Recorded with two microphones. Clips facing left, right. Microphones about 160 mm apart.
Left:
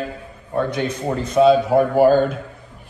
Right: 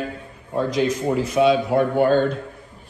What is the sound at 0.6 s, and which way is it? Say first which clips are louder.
Speech: right 2 dB; 30° left (ahead or behind).